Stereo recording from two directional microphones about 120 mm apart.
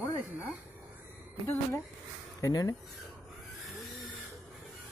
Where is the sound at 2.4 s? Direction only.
30° left (ahead or behind).